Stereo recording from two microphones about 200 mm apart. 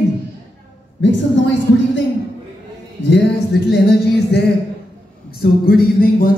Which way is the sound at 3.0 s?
55° left (ahead or behind).